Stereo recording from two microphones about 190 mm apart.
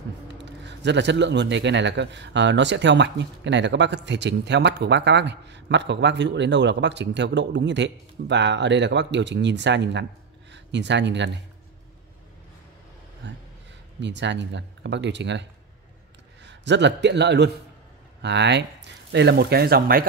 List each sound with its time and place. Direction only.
0.4 s speech: 65° right (ahead or behind)
13.2 s a sound: 70° right (ahead or behind)
13.9 s speech: 70° right (ahead or behind)
16.4 s a man's voice: 65° right (ahead or behind)